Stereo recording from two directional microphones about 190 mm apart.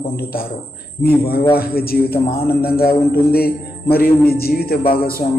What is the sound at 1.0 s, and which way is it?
Mantra, 50° left (ahead or behind).